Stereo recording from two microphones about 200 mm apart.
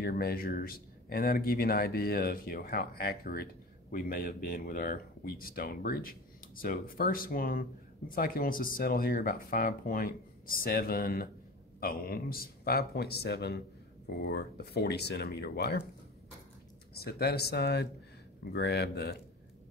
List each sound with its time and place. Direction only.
0.0 s speech: 50° left (ahead or behind)
16.9 s speech: 50° left (ahead or behind)